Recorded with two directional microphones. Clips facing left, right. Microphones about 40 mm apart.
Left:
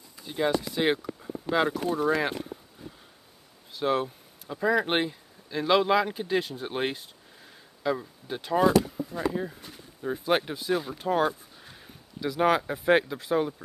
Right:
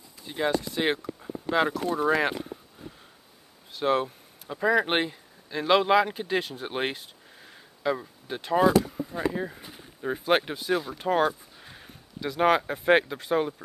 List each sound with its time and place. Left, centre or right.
0.3 s speech: centre
2.0 s speech: centre
3.8 s speech: centre
10.8 s speech: centre